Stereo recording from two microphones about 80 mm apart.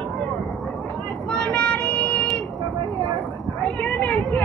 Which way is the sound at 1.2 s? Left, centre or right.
Centre.